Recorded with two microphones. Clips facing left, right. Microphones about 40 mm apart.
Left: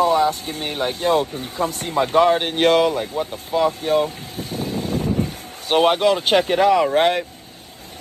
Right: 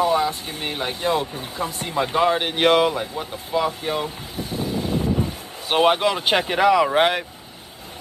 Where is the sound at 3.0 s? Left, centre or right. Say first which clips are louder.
Left 4 dB; centre.